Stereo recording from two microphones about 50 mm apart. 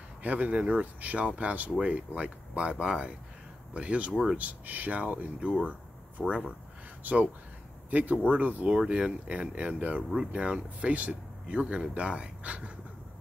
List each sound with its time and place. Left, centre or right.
0.2 s speech: right
4.1 s speech: centre
4.4 s speech: right
8.6 s speech: right
10.1 s speech: centre